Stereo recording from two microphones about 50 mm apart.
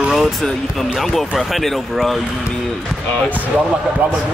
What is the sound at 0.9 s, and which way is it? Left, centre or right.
Speech, centre.